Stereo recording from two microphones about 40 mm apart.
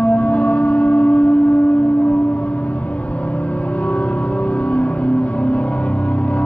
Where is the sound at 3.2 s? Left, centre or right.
Left.